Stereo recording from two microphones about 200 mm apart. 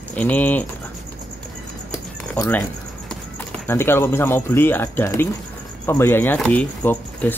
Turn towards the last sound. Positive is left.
turn(degrees=10)  # may be behind; listen again after turning